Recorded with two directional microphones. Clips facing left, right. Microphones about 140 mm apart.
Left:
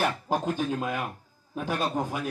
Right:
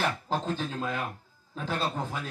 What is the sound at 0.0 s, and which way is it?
A man's voice, 15° left (ahead or behind).